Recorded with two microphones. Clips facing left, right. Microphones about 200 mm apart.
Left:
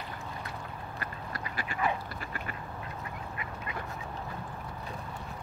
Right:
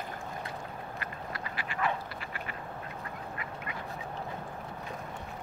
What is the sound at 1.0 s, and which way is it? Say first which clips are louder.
Duck: left 2 dB; 40° left (ahead or behind).